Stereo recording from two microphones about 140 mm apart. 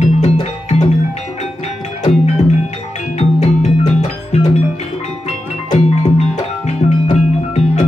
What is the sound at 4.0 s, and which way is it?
Music, 55° left (ahead or behind).